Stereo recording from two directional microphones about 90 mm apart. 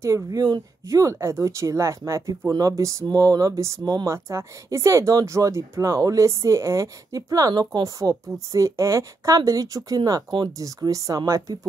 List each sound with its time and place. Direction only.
0.0 s speech: 35° right (ahead or behind)